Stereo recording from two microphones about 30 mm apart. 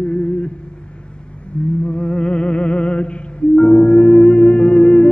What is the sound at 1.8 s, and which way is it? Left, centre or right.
Music, left.